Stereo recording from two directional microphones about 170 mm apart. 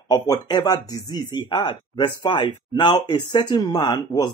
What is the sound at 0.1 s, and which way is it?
Speech, 25° left (ahead or behind).